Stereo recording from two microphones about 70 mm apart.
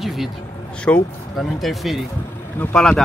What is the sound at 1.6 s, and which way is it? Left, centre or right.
Speech, centre.